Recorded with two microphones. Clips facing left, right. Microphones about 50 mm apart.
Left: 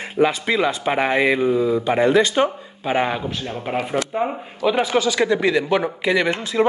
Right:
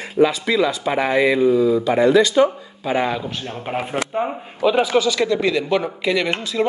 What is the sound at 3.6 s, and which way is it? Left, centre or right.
Speech, centre.